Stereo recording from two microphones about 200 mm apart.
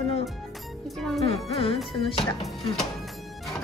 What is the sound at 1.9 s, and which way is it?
Speech, 25° left (ahead or behind).